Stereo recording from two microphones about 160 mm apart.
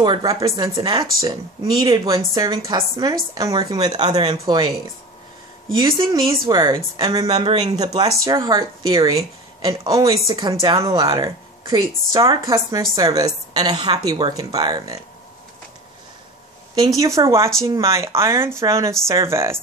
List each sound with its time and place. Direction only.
0.0 s speech: 25° right (ahead or behind)
5.8 s a woman's voice: 25° right (ahead or behind)
16.7 s speech: 20° right (ahead or behind)